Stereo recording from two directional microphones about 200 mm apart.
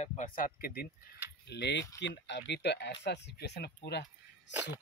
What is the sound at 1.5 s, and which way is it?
Speech, 60° left (ahead or behind).